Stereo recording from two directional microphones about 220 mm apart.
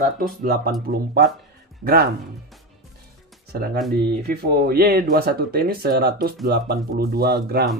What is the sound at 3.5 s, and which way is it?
Speech, 45° right (ahead or behind).